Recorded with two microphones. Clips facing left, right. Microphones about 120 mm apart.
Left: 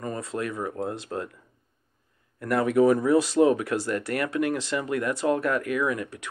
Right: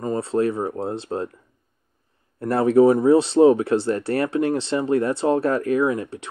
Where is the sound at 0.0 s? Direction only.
30° right (ahead or behind).